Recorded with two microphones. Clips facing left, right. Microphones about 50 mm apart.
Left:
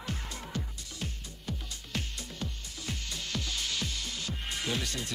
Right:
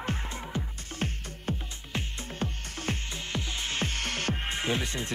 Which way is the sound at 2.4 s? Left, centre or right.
Right.